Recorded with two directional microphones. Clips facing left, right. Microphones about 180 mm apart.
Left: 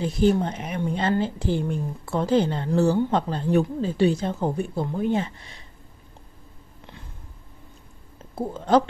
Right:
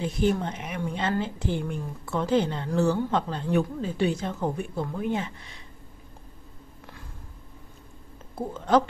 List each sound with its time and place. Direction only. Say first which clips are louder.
0.0 s a woman's voice: left 4 dB; 35° left (ahead or behind)